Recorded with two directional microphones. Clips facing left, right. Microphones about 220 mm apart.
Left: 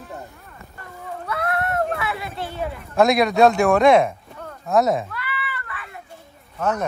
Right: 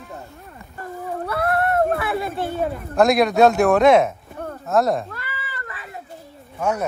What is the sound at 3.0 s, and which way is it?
Speech, centre (ahead or behind).